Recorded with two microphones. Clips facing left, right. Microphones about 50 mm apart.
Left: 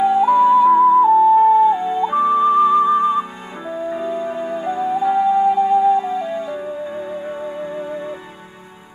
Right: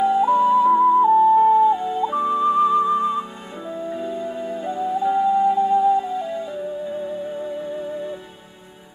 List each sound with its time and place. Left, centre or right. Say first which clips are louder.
0.0 s music: left 3 dB; left
0.7 s music: left 3 dB; left
1.6 s music: left 3 dB; left